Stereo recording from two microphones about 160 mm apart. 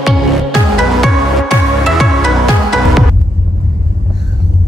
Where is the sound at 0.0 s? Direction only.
Centre (ahead or behind).